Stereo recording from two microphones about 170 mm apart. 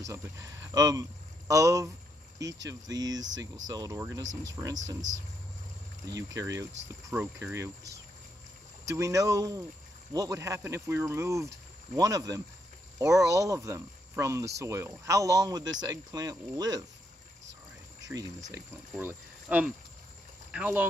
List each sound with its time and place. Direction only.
0.0 s speech: 15° right (ahead or behind)
6.0 s speech: 20° right (ahead or behind)
18.0 s speech: 20° right (ahead or behind)